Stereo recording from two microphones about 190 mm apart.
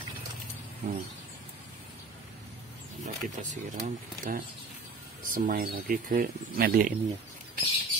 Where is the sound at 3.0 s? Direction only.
40° right (ahead or behind).